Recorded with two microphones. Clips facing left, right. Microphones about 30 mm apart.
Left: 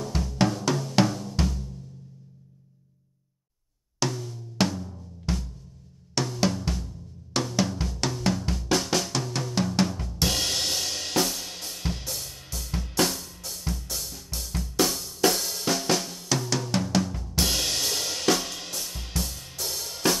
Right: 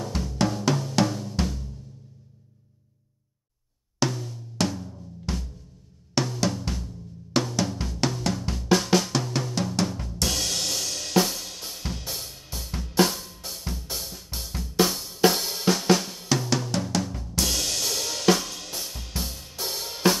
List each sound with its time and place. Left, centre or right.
0.0 s drum: centre
4.0 s drum: centre
9.8 s drum kit: centre
10.1 s drum kit: left
11.7 s drum kit: centre
12.0 s drum kit: centre
13.4 s cymbal: centre
13.9 s drum kit: centre
15.7 s drum: centre
17.0 s drum kit: centre
17.4 s drum kit: centre
18.3 s drum kit: centre
18.8 s drum kit: centre
19.1 s drum kit: centre